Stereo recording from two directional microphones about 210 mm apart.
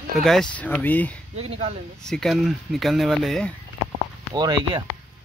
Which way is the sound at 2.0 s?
Centre (ahead or behind).